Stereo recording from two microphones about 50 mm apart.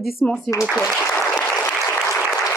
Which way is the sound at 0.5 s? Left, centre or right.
Left.